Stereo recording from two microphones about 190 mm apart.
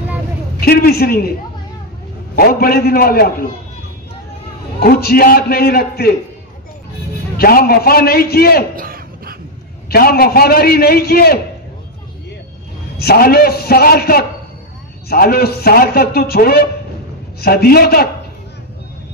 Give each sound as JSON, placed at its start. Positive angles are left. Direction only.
{"t": 0.6, "sound": "a man's voice", "side_deg": 55}
{"t": 2.3, "sound": "a man's voice", "side_deg": 55}
{"t": 4.7, "sound": "a man's voice", "side_deg": 55}
{"t": 7.3, "sound": "a man's voice", "side_deg": 50}
{"t": 8.7, "sound": "a sound", "side_deg": -50}
{"t": 9.8, "sound": "a man's voice", "side_deg": 55}
{"t": 12.9, "sound": "a man's voice", "side_deg": 55}